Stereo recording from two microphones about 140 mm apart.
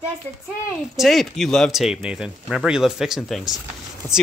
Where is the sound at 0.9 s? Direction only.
Centre (ahead or behind).